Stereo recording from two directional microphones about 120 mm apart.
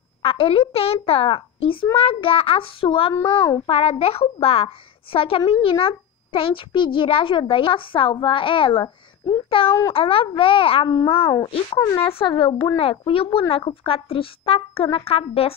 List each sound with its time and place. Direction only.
0.2 s a child's voice: 50° left (ahead or behind)
3.2 s a child's voice: 30° left (ahead or behind)
3.6 s a child's voice: 55° left (ahead or behind)
8.8 s speech: 30° left (ahead or behind)
9.9 s a child's voice: 50° left (ahead or behind)